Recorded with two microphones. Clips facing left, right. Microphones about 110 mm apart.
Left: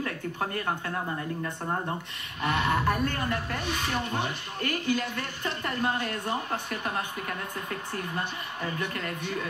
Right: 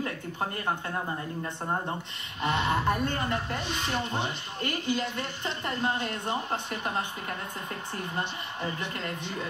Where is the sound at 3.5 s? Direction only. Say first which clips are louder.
Left 1 dB; 55° left (ahead or behind).